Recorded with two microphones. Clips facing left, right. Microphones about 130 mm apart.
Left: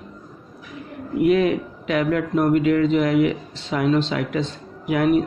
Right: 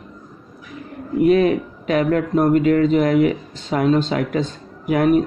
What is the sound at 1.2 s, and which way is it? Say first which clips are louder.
Speech: right 3 dB; 40° right (ahead or behind).